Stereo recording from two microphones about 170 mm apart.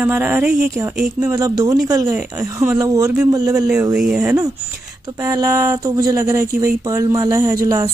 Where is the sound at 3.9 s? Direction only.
5° right (ahead or behind).